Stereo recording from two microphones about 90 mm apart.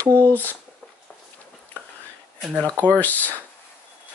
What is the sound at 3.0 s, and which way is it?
Speech, 20° left (ahead or behind).